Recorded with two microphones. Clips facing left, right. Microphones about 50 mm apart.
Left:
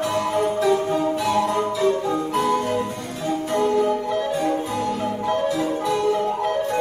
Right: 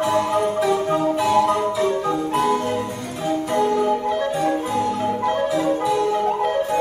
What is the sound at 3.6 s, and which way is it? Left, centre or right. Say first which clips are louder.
Music: even; centre.